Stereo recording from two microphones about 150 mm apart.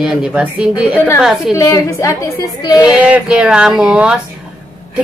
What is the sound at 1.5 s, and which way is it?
A woman's voice, 20° left (ahead or behind).